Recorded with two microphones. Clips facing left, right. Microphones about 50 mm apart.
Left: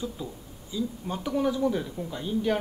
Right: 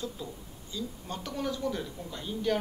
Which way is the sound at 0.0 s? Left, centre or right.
Centre.